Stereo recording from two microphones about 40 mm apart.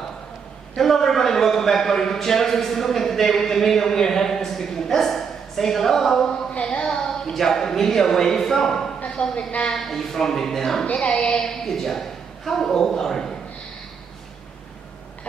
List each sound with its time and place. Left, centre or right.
0.7 s a man's voice: centre
6.5 s a woman's voice: left; by 8.9 s centre
9.0 s a woman's voice: left
9.7 s a man's voice: centre
10.9 s speech: left
11.4 s a man's voice: centre